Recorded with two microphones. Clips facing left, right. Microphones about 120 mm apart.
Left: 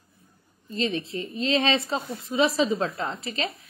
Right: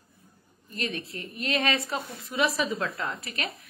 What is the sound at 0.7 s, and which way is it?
A woman's voice, 25° left (ahead or behind).